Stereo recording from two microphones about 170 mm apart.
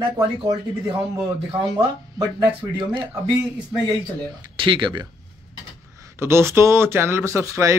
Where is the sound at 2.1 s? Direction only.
25° right (ahead or behind).